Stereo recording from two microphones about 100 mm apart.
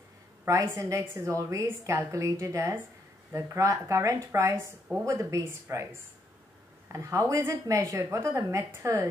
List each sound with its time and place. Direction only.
0.5 s a woman's voice: 30° right (ahead or behind)
6.9 s a woman's voice: 30° right (ahead or behind)